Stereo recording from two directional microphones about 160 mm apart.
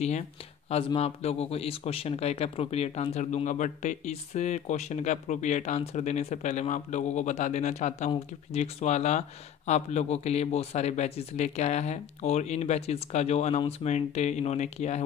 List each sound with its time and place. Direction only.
0.7 s a man's voice: 40° left (ahead or behind)